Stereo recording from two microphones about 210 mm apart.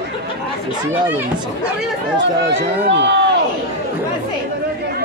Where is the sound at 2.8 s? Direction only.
55° right (ahead or behind).